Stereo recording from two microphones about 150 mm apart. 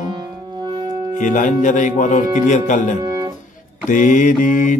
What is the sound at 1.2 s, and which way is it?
Mantra, 60° left (ahead or behind).